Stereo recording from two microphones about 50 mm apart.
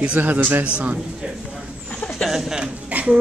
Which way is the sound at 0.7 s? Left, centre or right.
Right.